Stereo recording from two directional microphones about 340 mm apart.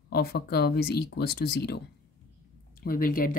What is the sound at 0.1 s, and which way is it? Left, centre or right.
Speech, left.